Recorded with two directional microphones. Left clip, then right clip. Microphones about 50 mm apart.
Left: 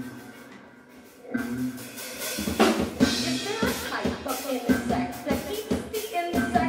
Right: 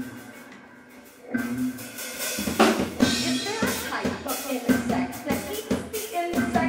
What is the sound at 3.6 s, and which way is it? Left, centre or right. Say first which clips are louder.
Music: right 1 dB; centre.